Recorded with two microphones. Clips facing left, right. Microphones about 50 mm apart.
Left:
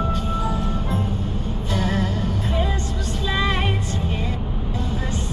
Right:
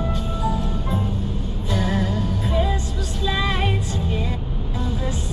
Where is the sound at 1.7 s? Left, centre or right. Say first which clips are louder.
Right 1 dB; centre.